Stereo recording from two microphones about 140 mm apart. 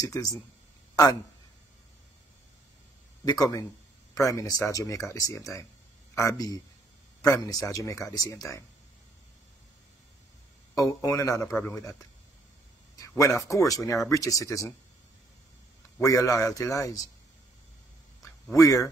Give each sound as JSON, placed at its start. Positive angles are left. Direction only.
{"t": 0.0, "sound": "speech", "side_deg": 25}
{"t": 4.1, "sound": "speech", "side_deg": 25}
{"t": 10.7, "sound": "speech", "side_deg": 25}
{"t": 12.9, "sound": "a sound", "side_deg": 20}
{"t": 13.4, "sound": "speech", "side_deg": 25}
{"t": 16.0, "sound": "speech", "side_deg": 25}
{"t": 18.5, "sound": "speech", "side_deg": 25}